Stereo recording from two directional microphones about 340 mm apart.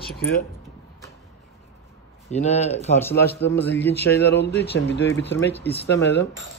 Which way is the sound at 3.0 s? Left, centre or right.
Centre.